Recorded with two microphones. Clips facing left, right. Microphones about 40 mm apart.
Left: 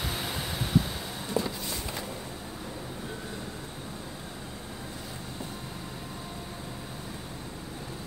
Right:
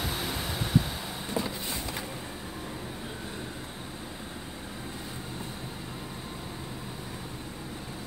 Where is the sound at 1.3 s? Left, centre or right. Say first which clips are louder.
Left 2 dB; right.